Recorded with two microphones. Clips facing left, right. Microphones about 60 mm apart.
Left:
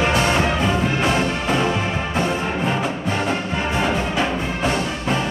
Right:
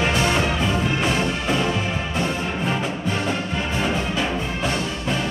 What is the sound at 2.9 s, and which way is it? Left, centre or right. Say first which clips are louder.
Music: left 2 dB; centre.